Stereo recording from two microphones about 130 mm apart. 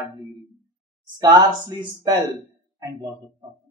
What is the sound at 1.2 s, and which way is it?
Speech, 30° right (ahead or behind).